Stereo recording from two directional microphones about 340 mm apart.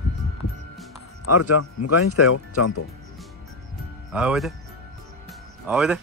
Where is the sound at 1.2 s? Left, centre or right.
Left.